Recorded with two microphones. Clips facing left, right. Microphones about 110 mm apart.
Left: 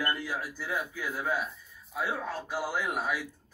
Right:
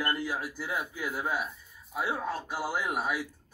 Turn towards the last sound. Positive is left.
turn(degrees=-5)  # may be behind; listen again after turning